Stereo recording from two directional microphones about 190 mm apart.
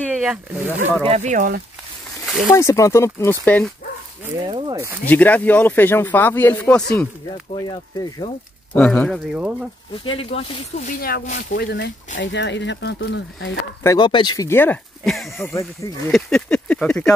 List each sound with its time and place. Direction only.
0.0 s speech: 5° right (ahead or behind)
1.0 s speech: 35° right (ahead or behind)
2.5 s speech: 15° left (ahead or behind)
4.5 s speech: 25° right (ahead or behind)
5.0 s speech: 10° left (ahead or behind)
7.5 s speech: 20° left (ahead or behind)
8.7 s speech: 5° left (ahead or behind)
9.3 s a sound: 5° right (ahead or behind)
10.1 s speech: 30° left (ahead or behind)
10.9 s speech: 50° left (ahead or behind)
13.8 s speech: 25° left (ahead or behind); by 15.3 s centre (ahead or behind)
15.3 s speech: 15° left (ahead or behind)
16.1 s a sound: centre (ahead or behind)